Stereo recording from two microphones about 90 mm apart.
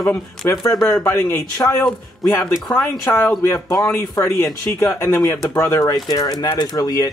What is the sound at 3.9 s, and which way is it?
Speech, 35° left (ahead or behind).